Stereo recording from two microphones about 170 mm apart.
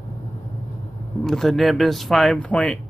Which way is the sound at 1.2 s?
Centre (ahead or behind).